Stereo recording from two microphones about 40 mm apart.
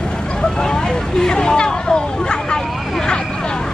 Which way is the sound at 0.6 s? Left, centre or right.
Centre.